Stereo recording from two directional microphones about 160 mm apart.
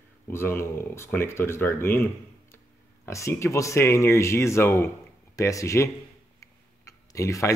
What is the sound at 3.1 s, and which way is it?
Speech, 15° left (ahead or behind).